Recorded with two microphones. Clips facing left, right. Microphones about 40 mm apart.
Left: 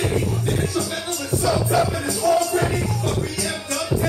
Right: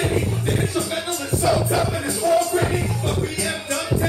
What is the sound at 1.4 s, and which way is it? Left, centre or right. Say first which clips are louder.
Music: even; right.